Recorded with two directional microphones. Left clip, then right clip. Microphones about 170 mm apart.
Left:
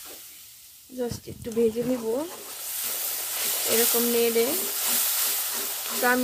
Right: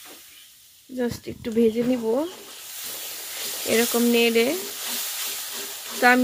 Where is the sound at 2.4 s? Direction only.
30° left (ahead or behind).